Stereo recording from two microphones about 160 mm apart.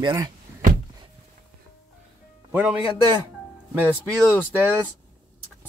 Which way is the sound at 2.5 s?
10° right (ahead or behind).